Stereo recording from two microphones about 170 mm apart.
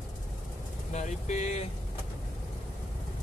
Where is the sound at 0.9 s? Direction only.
45° left (ahead or behind).